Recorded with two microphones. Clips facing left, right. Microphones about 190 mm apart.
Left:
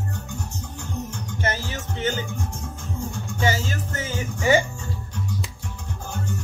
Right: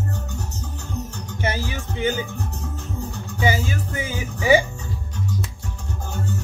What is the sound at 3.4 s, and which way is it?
Music, 10° right (ahead or behind).